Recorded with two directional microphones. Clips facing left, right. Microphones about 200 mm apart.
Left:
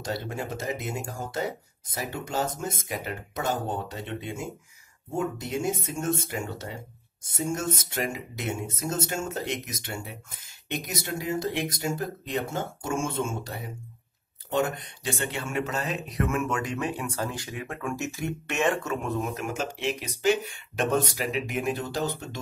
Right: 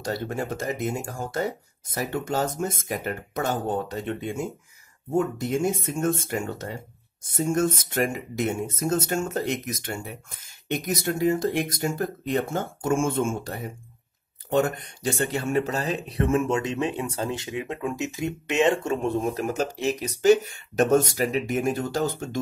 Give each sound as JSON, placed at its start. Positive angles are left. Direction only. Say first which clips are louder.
{"t": 0.0, "sound": "speech", "louder": "right 3 dB", "side_deg": -55}
{"t": 5.4, "sound": "speech", "louder": "right 4 dB", "side_deg": -50}